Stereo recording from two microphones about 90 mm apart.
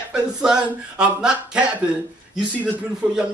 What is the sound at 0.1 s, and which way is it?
Speech, 10° right (ahead or behind).